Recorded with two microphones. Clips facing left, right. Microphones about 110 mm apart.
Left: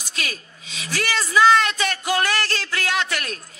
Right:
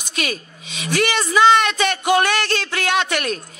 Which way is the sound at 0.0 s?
20° right (ahead or behind).